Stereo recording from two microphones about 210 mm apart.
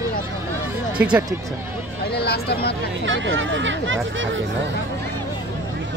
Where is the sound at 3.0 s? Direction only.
65° right (ahead or behind).